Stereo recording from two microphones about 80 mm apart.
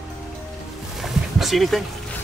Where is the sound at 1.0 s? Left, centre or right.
Centre.